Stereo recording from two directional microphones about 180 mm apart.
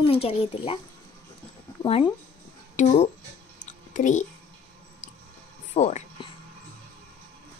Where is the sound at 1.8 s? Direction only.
30° left (ahead or behind).